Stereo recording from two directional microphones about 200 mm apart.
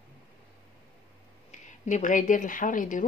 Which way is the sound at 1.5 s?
35° left (ahead or behind).